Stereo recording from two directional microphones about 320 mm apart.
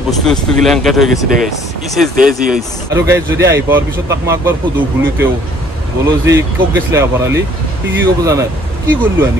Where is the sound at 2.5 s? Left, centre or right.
Centre.